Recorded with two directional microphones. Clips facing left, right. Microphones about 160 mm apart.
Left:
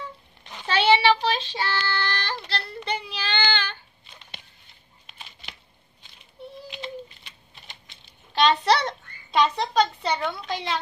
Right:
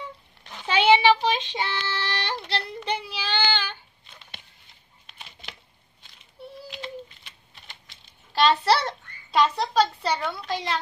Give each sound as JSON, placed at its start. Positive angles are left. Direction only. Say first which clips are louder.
{"t": 0.7, "sound": "child singing", "louder": "right 1 dB", "side_deg": -10}
{"t": 2.8, "sound": "child singing", "louder": "right 1 dB", "side_deg": -10}
{"t": 7.9, "sound": "a sound", "louder": "even", "side_deg": -5}